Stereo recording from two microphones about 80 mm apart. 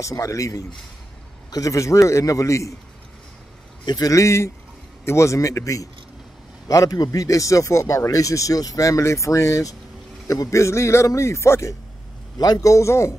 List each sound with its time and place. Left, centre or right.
0.0 s speech: left
3.8 s speech: left
4.1 s speech: left
12.4 s speech: left